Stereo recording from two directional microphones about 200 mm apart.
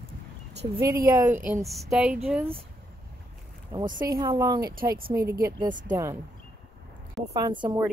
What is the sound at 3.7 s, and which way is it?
Speech, 20° right (ahead or behind).